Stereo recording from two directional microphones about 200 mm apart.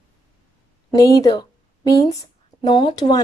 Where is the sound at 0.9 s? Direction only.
20° left (ahead or behind).